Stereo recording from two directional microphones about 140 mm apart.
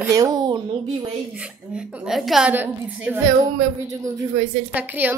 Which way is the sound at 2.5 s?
10° right (ahead or behind).